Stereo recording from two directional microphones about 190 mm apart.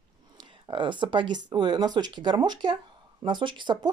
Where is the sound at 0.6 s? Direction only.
25° right (ahead or behind).